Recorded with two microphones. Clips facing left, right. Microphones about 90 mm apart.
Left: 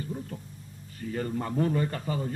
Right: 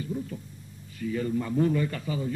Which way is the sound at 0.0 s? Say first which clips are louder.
Right 3 dB; 40° left (ahead or behind).